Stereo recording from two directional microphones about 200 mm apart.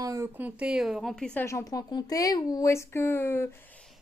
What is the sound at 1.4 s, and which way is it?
Speech, 15° left (ahead or behind).